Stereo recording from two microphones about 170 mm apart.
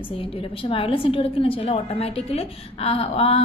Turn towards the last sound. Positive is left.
turn(degrees=35)  # may be behind; listen again after turning